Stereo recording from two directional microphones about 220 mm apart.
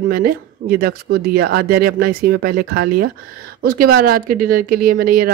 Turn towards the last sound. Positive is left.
turn(degrees=-40)  # may be behind; listen again after turning